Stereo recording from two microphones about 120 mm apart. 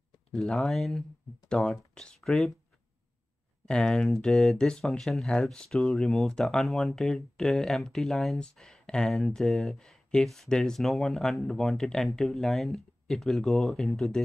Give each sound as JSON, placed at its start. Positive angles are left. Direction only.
{"t": 0.3, "sound": "speech", "side_deg": 5}
{"t": 3.6, "sound": "speech", "side_deg": 5}